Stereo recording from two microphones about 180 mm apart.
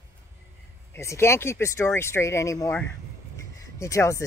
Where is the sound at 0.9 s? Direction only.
15° left (ahead or behind).